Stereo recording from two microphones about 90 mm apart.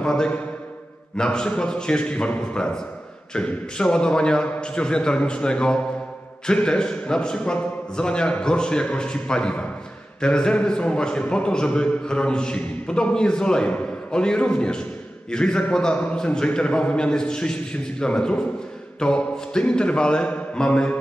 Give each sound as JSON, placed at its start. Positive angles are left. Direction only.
{"t": 0.0, "sound": "a man's voice", "side_deg": 10}